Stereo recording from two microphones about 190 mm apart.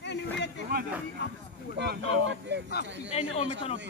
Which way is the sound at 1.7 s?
60° right (ahead or behind).